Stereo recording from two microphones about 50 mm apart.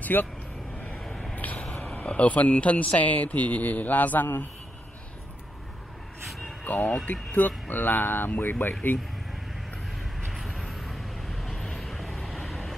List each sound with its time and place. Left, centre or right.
0.0 s speech: left
1.3 s a sound: left
1.9 s a man's voice: left
6.6 s a man's voice: left
10.3 s vehicle: centre